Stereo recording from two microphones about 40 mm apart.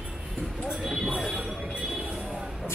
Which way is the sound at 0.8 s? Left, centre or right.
Centre.